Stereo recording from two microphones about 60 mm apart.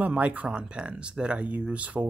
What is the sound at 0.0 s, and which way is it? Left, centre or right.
Speech, right.